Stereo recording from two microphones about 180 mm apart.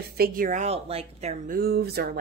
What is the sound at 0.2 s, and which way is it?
Speech, 50° right (ahead or behind).